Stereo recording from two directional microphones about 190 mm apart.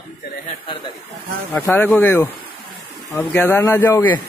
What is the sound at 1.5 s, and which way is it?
Speech, 15° left (ahead or behind).